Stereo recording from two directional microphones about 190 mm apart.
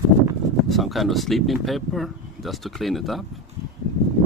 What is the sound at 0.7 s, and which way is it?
Speech, centre (ahead or behind).